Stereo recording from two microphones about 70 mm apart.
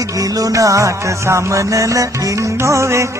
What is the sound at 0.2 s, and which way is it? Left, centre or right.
Music, right.